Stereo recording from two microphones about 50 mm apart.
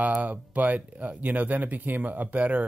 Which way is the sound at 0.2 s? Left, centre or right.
Right.